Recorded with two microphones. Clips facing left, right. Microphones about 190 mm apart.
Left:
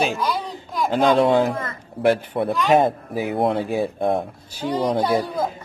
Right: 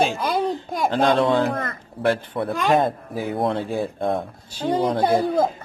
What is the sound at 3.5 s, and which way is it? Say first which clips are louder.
Speech: left 2 dB; 20° left (ahead or behind).